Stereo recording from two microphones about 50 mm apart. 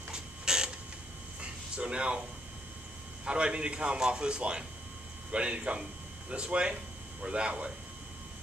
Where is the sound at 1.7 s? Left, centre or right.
Right.